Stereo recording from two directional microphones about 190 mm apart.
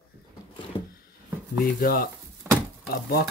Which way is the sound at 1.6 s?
50° left (ahead or behind).